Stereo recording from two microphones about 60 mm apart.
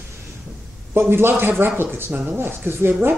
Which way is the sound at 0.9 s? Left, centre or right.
Right.